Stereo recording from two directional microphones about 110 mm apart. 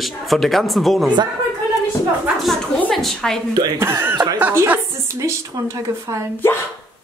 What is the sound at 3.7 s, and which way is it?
Speech, 25° right (ahead or behind).